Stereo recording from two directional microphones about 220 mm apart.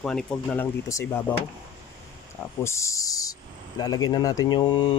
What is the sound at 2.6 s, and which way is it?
Speech, 15° left (ahead or behind).